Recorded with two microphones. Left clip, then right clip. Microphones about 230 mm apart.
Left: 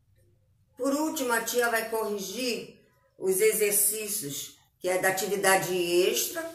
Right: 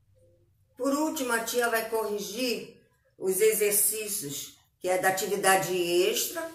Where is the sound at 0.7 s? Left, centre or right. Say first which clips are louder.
Even; centre.